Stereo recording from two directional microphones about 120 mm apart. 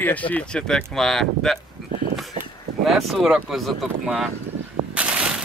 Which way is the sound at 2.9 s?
Centre (ahead or behind).